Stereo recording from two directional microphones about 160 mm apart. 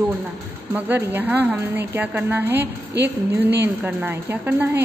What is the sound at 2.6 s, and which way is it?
Speech, 90° right.